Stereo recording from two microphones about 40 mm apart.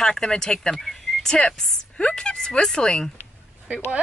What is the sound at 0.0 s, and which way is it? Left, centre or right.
Speech, centre.